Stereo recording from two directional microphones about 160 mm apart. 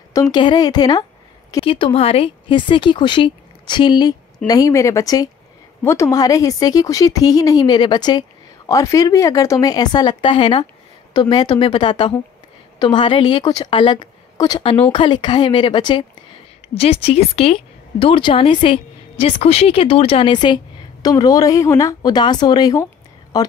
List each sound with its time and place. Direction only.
0.1 s a woman's voice: 25° left (ahead or behind)